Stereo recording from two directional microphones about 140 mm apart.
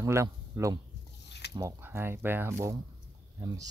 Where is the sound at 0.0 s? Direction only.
20° right (ahead or behind).